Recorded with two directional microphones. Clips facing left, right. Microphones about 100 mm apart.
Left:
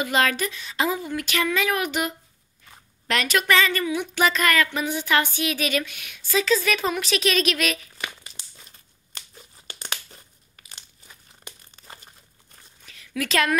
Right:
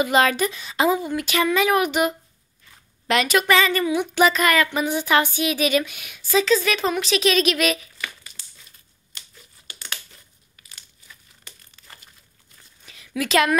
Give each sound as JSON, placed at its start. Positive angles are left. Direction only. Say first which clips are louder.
{"t": 0.0, "sound": "a woman's voice", "louder": "right 4 dB", "side_deg": -20}
{"t": 8.0, "sound": "crumpling", "louder": "even", "side_deg": 20}
{"t": 11.4, "sound": "crumpling", "louder": "left 4 dB", "side_deg": 25}
{"t": 12.8, "sound": "a sound", "louder": "right 2 dB", "side_deg": -15}